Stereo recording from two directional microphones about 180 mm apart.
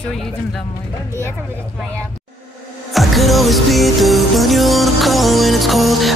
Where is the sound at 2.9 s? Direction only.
Centre (ahead or behind).